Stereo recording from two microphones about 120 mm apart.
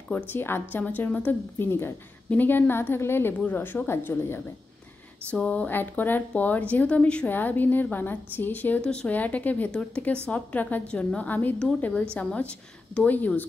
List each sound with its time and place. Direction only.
0.3 s a woman's voice: 15° left (ahead or behind)